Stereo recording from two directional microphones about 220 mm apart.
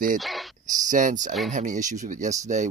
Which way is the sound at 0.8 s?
35° right (ahead or behind).